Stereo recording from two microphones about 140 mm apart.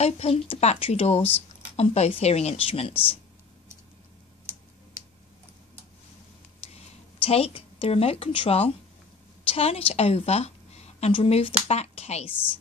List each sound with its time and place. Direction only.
0.0 s a woman's voice: 45° left (ahead or behind)
2.9 s speech: 15° left (ahead or behind)
7.2 s a woman's voice: 45° left (ahead or behind)